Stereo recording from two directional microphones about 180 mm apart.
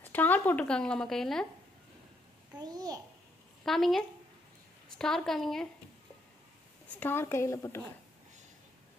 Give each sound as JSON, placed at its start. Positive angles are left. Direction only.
{"t": 0.0, "sound": "speech", "side_deg": 10}
{"t": 2.6, "sound": "a child's voice", "side_deg": -20}
{"t": 3.6, "sound": "a woman's voice", "side_deg": 0}
{"t": 7.0, "sound": "a woman's voice", "side_deg": 10}